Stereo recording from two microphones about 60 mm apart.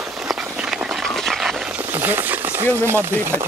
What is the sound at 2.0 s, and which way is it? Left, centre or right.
Speech, right.